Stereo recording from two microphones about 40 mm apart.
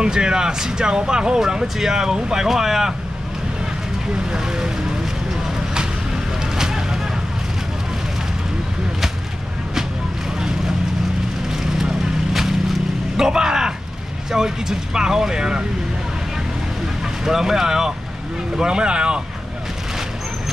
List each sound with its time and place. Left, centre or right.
0.0 s speech: centre
2.4 s speech: centre
4.3 s speech: centre
6.6 s vehicle: centre
11.6 s vehicle: centre
13.2 s speech: centre
17.2 s speech: centre